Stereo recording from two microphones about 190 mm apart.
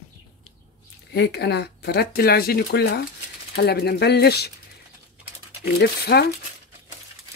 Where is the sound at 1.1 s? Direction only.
60° left (ahead or behind).